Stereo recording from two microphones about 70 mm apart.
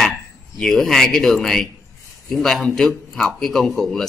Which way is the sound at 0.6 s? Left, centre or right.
Centre.